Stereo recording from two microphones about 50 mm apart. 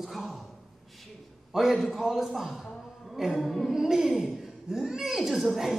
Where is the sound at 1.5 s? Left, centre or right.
Centre.